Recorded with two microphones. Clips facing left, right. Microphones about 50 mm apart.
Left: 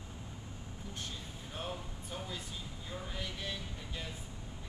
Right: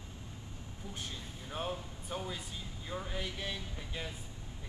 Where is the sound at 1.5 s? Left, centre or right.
Centre.